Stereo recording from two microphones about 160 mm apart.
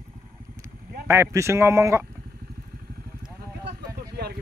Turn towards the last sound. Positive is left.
turn(degrees=-75)  # may be behind; listen again after turning